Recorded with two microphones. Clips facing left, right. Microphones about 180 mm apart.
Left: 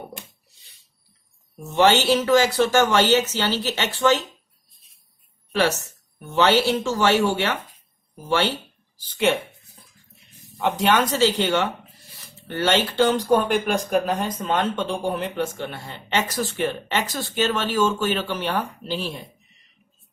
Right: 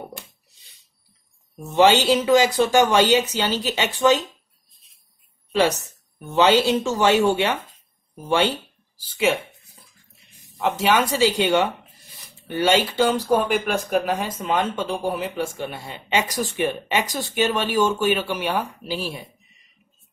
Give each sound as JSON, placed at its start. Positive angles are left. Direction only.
{"t": 1.6, "sound": "speech", "side_deg": -15}
{"t": 5.5, "sound": "speech", "side_deg": -15}
{"t": 10.6, "sound": "speech", "side_deg": -5}